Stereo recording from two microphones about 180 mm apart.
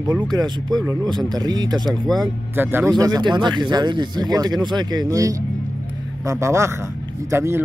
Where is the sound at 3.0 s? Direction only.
25° right (ahead or behind).